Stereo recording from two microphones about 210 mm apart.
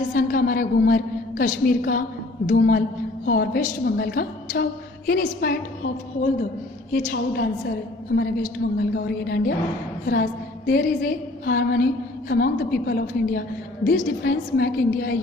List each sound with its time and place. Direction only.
0.1 s a woman's voice: 40° left (ahead or behind)
6.9 s a woman's voice: 40° left (ahead or behind)
8.1 s a woman's voice: 55° left (ahead or behind)
10.7 s a woman's voice: 45° left (ahead or behind)